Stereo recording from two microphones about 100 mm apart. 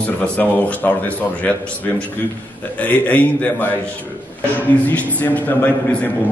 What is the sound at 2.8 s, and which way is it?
Speech, 15° left (ahead or behind).